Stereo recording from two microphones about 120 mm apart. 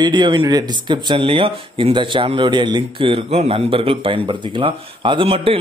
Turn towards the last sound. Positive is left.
turn(degrees=-55)  # may be behind; listen again after turning